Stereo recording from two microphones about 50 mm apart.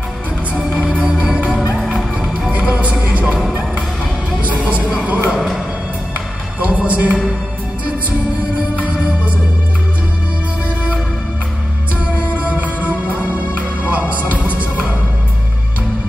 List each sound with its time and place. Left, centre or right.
0.6 s music: centre
2.5 s music: right
4.6 s music: right
6.6 s music: right
8.7 s music: right
12.4 s music: right